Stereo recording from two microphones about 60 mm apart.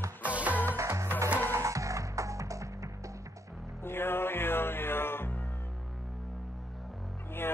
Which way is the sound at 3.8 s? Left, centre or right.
Left.